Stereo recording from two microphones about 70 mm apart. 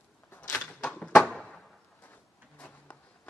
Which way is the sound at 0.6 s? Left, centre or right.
Centre.